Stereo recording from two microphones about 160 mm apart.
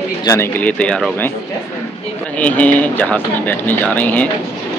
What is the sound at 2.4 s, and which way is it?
Speech, 10° left (ahead or behind).